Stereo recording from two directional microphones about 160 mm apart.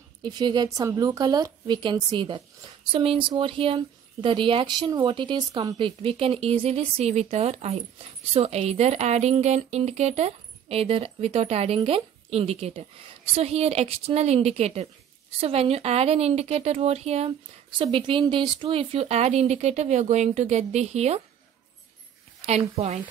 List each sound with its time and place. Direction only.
0.2 s a woman's voice: 25° right (ahead or behind); by 21.2 s 45° right (ahead or behind)